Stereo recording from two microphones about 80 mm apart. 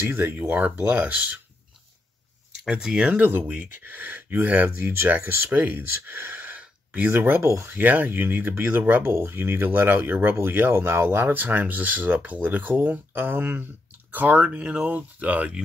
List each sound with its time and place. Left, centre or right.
0.0 s speech: right
2.6 s speech: centre
3.1 s speech: right
7.4 s speech: right
7.7 s speech: right